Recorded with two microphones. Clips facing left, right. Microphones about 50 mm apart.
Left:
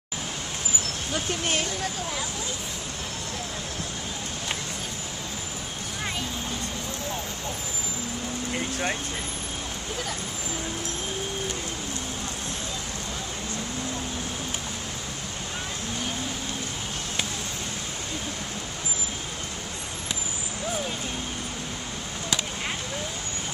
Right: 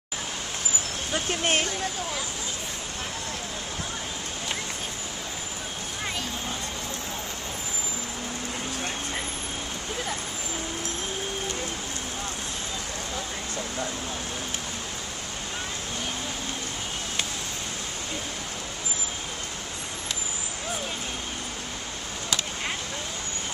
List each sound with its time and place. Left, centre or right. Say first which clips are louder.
1.4 s speech: right 5 dB; right